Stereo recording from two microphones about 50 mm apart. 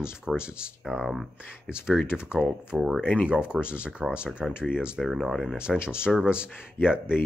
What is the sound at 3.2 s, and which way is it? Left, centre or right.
Speech, right.